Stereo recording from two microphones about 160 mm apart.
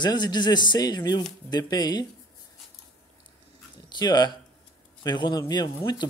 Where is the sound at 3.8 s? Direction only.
25° left (ahead or behind).